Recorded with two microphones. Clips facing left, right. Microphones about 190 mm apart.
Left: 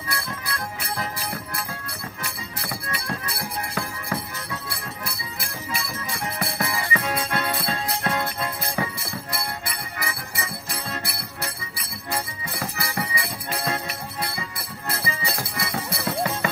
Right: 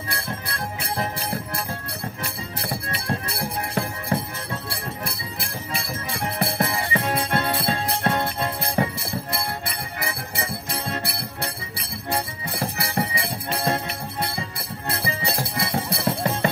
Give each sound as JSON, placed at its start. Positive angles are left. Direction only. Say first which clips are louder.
{"t": 0.9, "sound": "music", "louder": "right 4 dB", "side_deg": -30}